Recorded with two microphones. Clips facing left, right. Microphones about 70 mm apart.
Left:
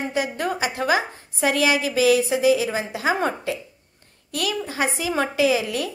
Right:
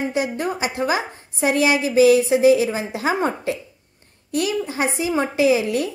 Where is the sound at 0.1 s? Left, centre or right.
Right.